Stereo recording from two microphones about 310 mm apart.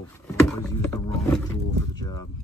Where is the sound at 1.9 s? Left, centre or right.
Centre.